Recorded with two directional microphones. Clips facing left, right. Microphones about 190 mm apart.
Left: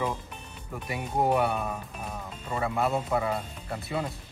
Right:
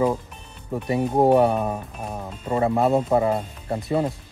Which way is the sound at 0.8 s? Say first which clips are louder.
Right 9 dB; 35° right (ahead or behind).